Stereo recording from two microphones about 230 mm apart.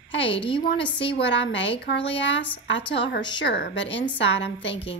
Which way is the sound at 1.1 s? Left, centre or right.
Left.